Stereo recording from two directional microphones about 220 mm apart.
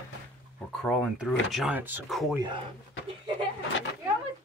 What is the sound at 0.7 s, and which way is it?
A woman's voice, 5° left (ahead or behind).